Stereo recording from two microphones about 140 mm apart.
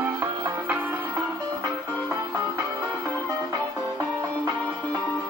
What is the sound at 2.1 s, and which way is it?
Music, 20° right (ahead or behind).